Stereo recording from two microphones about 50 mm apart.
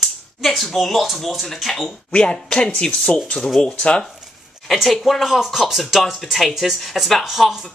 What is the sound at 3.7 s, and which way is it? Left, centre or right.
Speech, left.